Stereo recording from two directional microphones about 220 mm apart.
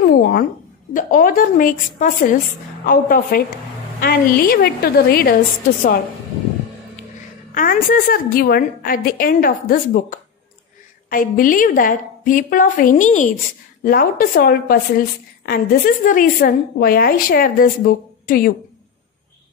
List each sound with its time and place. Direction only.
0.1 s a woman's voice: 40° left (ahead or behind)
7.5 s a woman's voice: 40° left (ahead or behind)